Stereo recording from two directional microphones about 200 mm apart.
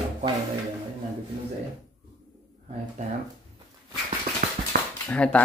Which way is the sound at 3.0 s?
35° right (ahead or behind).